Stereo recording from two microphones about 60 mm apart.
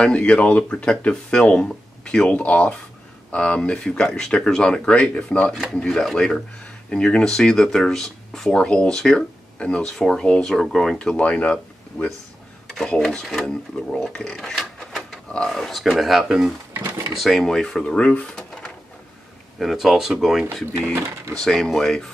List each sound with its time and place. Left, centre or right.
0.0 s speech: centre
5.9 s speech: centre
6.9 s speech: centre
12.7 s speech: centre
14.3 s printer: centre
15.5 s speech: centre
19.6 s speech: centre
21.5 s speech: centre